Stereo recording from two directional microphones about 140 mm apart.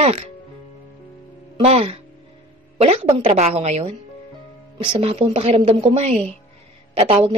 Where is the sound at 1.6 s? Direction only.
50° right (ahead or behind).